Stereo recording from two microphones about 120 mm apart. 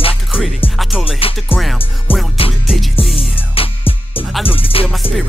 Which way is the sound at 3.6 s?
50° left (ahead or behind).